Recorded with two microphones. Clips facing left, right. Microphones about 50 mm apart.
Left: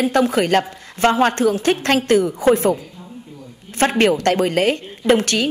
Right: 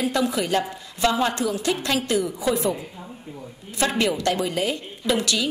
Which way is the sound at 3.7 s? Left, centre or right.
Left.